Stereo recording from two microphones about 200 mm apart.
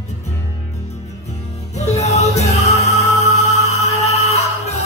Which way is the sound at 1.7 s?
35° left (ahead or behind).